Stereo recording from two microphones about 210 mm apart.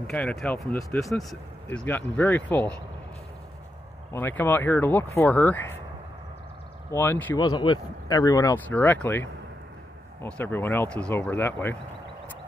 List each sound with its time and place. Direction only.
0.0 s speech: 5° left (ahead or behind)
4.1 s speech: 10° left (ahead or behind)
6.9 s speech: 10° left (ahead or behind)
7.3 s speech: 20° left (ahead or behind)